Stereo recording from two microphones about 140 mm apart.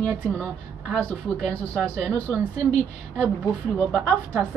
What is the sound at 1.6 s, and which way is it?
Speech, 10° left (ahead or behind).